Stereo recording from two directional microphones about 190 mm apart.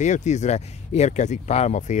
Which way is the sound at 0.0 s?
40° left (ahead or behind).